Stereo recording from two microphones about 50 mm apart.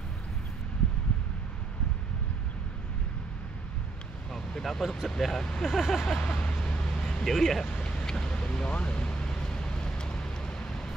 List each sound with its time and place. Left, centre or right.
4.3 s speech: centre
5.7 s vehicle: centre
6.3 s vehicle: left
7.2 s vehicle: centre
7.7 s vehicle: centre